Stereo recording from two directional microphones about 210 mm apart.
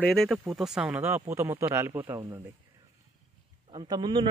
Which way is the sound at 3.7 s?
20° right (ahead or behind).